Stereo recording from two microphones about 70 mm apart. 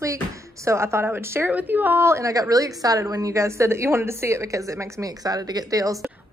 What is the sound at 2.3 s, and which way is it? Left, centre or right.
A woman's voice, right.